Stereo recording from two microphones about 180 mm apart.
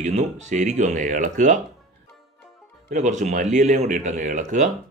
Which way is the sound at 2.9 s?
40° right (ahead or behind).